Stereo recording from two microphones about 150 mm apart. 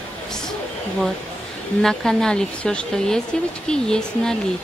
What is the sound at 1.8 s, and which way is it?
A woman's voice, 5° left (ahead or behind).